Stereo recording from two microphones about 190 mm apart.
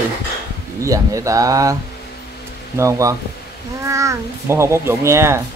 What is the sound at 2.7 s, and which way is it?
Speech, 15° right (ahead or behind).